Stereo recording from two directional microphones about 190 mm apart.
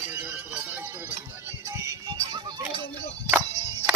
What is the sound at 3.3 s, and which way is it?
Music, 10° right (ahead or behind).